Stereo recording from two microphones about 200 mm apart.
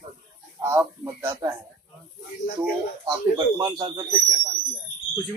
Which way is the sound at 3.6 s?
20° right (ahead or behind).